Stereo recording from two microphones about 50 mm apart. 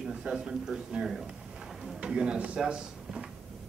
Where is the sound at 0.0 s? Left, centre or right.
Centre.